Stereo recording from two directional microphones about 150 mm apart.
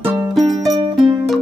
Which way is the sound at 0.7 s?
30° right (ahead or behind).